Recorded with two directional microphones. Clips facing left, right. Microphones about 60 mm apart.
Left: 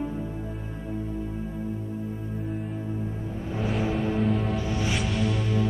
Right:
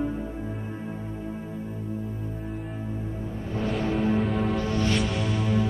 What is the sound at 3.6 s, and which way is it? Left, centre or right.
Music, centre.